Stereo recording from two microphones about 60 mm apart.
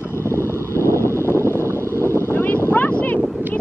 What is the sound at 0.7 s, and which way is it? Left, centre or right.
Vehicle, left.